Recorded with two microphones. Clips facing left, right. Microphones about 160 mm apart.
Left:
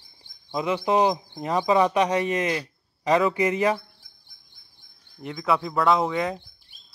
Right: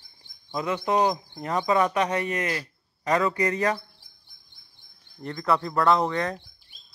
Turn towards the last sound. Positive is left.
turn(degrees=5)  # may be behind; listen again after turning